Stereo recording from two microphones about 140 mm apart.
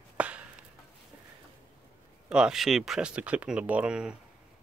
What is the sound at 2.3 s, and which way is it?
Speech, 5° right (ahead or behind).